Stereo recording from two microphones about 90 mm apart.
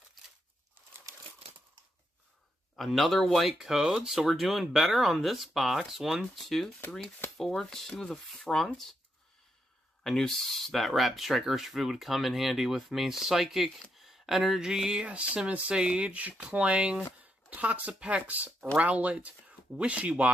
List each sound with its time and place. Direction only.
2.7 s speech: 5° left (ahead or behind)
10.0 s speech: 5° left (ahead or behind); by 20.2 s 15° right (ahead or behind)